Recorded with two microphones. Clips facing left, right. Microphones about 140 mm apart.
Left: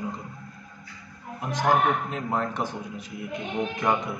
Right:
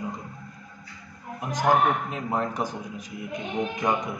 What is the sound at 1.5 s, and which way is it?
A man's voice, 10° right (ahead or behind).